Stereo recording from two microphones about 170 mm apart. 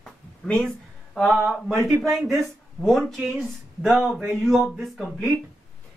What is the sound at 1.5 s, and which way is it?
Speech, centre (ahead or behind).